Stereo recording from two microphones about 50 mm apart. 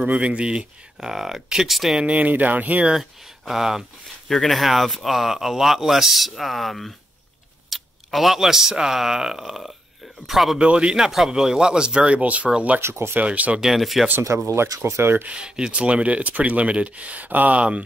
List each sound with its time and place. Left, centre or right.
0.0 s speech: right; by 2.0 s centre
2.0 s speech: right
2.9 s speech: centre
10.6 s speech: centre
11.0 s speech: centre; by 12.4 s right
12.8 s speech: right
13.1 s speech: right
13.6 s speech: centre
14.2 s speech: right
15.3 s speech: centre; by 17.6 s right
17.6 s speech: right